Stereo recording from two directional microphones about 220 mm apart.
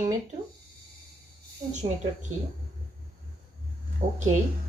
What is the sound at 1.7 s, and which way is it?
Speech, 30° right (ahead or behind).